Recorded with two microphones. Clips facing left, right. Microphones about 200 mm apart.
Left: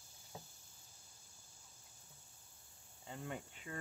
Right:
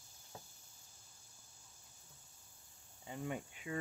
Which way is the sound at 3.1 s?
15° right (ahead or behind).